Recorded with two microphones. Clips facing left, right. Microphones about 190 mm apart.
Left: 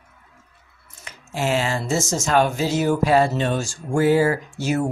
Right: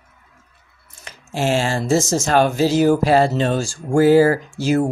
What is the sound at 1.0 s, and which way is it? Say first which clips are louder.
A man's voice: right 3 dB; 30° right (ahead or behind).